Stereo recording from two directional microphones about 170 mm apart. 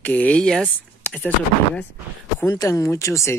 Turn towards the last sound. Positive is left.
turn(degrees=15)  # may be behind; listen again after turning